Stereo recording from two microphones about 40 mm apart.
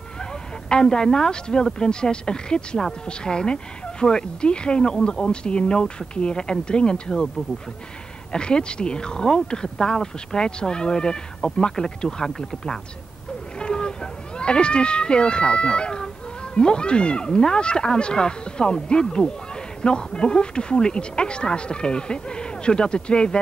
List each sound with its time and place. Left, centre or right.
0.2 s speech: centre
8.3 s speech: left
13.6 s a sound: left
14.4 s speech: left